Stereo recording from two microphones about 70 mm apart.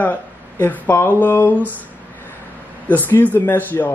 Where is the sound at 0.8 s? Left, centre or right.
Left.